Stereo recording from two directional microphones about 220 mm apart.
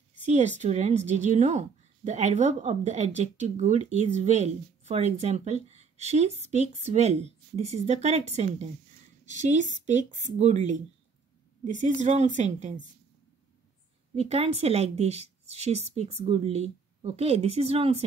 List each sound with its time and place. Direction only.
0.2 s a woman's voice: 30° right (ahead or behind)
14.1 s a woman's voice: 30° right (ahead or behind)